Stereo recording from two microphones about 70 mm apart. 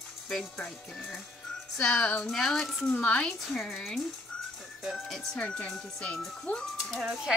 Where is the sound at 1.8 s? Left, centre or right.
Centre.